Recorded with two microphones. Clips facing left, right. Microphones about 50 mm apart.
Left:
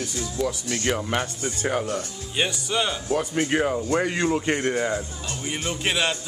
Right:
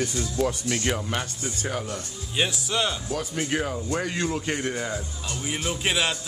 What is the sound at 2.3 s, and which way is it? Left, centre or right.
Music, centre.